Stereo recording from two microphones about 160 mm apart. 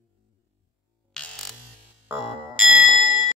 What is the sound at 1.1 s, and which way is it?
Music, 5° left (ahead or behind).